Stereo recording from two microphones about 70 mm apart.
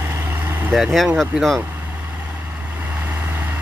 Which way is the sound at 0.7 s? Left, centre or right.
Centre.